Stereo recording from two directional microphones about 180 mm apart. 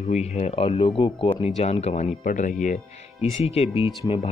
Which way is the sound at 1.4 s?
35° left (ahead or behind).